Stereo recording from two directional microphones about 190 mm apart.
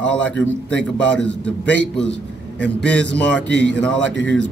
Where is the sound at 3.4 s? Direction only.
65° right (ahead or behind).